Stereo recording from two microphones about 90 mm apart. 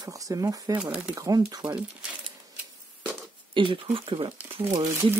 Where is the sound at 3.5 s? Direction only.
70° right (ahead or behind).